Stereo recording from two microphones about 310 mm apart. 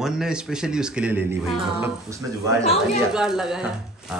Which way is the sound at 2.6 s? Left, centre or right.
Centre.